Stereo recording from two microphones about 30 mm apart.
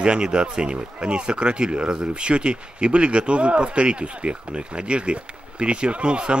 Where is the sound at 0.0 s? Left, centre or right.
Right.